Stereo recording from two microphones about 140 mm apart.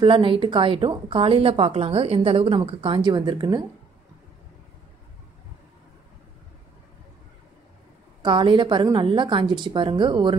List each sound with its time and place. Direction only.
0.0 s a woman's voice: 35° right (ahead or behind)
8.2 s a woman's voice: 35° right (ahead or behind)